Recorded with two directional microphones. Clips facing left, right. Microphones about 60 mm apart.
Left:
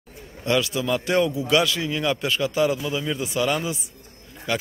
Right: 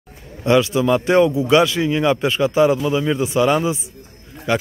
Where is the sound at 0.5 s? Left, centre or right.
Right.